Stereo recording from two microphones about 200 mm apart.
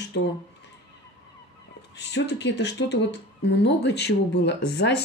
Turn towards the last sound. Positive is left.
turn(degrees=55)  # may be behind; listen again after turning